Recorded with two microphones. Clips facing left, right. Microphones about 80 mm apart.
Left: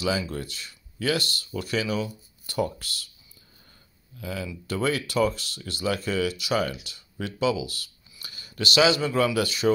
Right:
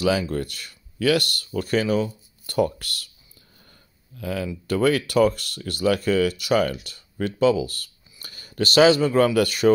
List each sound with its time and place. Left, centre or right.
0.0 s speech: right
4.2 s speech: right